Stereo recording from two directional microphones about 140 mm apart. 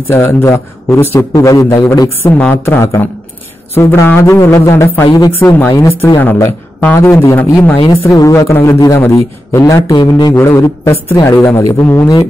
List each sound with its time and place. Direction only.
0.1 s a man's voice: 20° left (ahead or behind)